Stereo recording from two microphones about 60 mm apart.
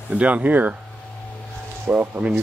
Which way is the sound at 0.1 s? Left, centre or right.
Right.